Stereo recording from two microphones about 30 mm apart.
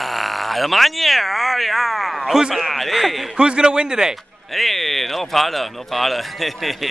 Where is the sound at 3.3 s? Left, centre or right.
Right.